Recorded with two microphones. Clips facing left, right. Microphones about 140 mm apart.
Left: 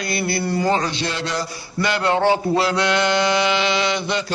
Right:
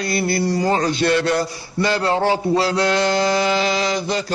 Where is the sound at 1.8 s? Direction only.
35° right (ahead or behind).